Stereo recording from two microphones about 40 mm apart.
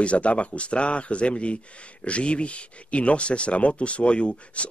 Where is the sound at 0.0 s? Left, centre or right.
Left.